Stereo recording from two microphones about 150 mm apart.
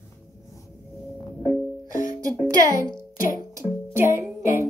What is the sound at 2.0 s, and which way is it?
Music, 25° right (ahead or behind).